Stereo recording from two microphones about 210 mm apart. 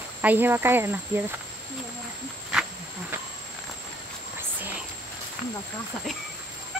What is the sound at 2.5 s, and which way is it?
Wild animals, 5° right (ahead or behind).